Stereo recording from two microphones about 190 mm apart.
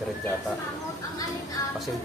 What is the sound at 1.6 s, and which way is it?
Music, 20° left (ahead or behind).